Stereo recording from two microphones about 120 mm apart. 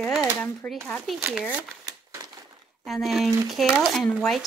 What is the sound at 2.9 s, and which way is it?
Speech, centre (ahead or behind).